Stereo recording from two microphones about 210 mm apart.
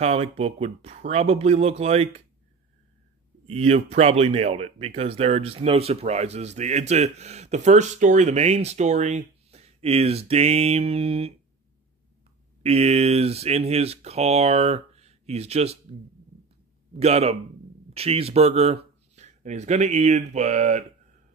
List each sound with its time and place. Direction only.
0.0 s speech: 30° right (ahead or behind)
3.4 s speech: 30° right (ahead or behind)
12.6 s speech: 30° right (ahead or behind)
17.0 s speech: 30° right (ahead or behind)